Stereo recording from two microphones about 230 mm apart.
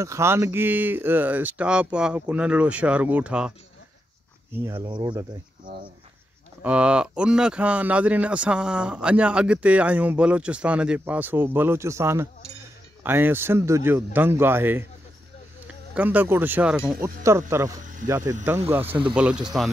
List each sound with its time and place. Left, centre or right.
0.0 s speech: centre
4.6 s speech: centre
6.6 s speech: centre